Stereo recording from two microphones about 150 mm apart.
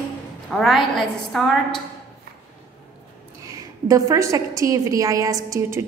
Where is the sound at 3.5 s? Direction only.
20° right (ahead or behind).